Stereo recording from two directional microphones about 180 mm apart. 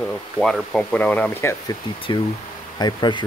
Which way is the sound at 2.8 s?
25° left (ahead or behind).